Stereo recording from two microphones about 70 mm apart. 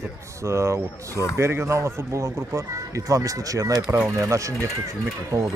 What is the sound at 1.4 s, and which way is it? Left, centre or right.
Speech, right.